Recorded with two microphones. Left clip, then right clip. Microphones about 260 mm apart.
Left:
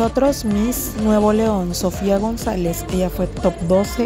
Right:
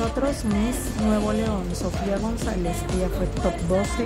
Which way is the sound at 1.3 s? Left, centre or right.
Left.